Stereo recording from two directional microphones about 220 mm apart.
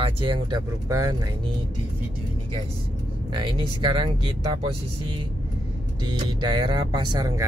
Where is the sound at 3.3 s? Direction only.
20° right (ahead or behind).